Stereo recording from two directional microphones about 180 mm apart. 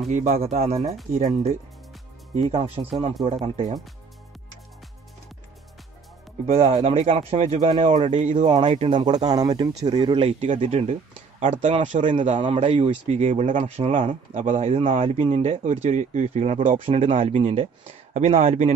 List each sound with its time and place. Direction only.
0.1 s speech: 40° right (ahead or behind)
1.1 s speech: 45° right (ahead or behind); by 3.5 s 30° right (ahead or behind)
6.4 s speech: 30° right (ahead or behind)
8.1 s speech: 40° right (ahead or behind)
12.4 s speech: 30° right (ahead or behind)